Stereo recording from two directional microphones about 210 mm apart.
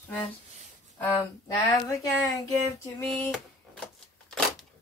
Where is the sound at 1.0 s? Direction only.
15° left (ahead or behind).